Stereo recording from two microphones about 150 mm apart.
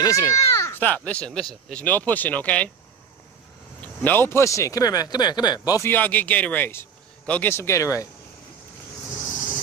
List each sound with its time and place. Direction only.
0.0 s a man's voice: 20° left (ahead or behind)
3.8 s speech: 10° left (ahead or behind)
5.9 s a man's voice: 10° left (ahead or behind)